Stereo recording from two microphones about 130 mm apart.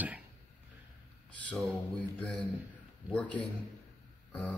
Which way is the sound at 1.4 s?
10° left (ahead or behind).